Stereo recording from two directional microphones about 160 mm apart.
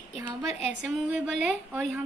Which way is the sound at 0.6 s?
10° right (ahead or behind).